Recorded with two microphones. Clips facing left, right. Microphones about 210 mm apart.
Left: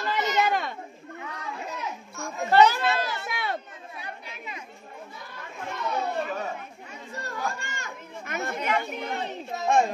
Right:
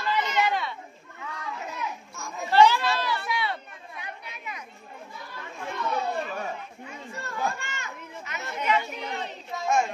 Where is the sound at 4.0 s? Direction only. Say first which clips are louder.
Even; 30° left (ahead or behind).